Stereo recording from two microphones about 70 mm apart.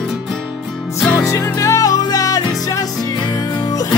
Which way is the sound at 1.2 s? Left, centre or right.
Left.